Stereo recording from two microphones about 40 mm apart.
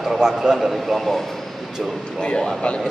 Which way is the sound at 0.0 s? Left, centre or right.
Centre.